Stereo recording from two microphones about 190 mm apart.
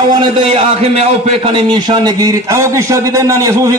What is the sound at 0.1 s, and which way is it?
A man's voice, 25° right (ahead or behind).